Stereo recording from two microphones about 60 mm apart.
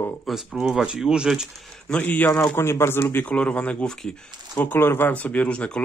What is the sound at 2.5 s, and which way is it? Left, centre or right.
Speech, left.